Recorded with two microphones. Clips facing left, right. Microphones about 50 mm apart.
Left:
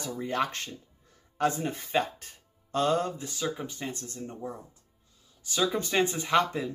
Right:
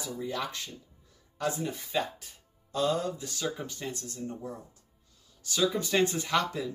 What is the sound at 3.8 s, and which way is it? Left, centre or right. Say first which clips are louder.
Speech: even; left.